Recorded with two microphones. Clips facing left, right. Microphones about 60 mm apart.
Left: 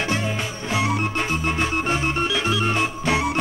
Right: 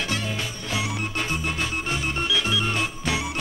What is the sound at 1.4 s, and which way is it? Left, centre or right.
Organ, left.